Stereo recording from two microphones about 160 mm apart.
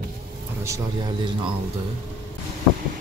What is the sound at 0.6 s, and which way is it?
Speech, 20° right (ahead or behind).